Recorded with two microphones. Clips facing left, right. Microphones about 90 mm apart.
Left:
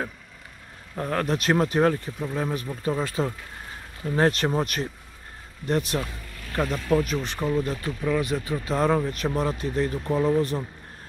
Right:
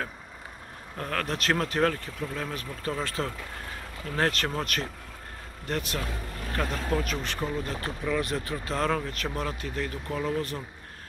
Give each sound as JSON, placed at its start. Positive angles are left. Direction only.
{"t": 0.9, "sound": "speech", "side_deg": 20}
{"t": 8.0, "sound": "speech", "side_deg": 5}